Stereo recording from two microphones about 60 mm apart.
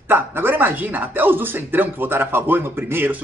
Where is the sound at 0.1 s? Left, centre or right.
Right.